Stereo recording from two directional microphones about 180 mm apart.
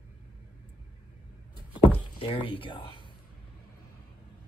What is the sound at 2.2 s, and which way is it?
Speech, 30° left (ahead or behind).